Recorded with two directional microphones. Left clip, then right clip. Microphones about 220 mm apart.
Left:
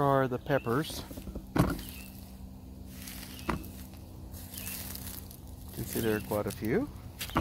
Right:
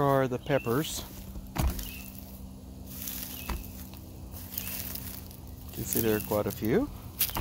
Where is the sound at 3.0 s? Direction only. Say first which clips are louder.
Right 4 dB; 5° right (ahead or behind).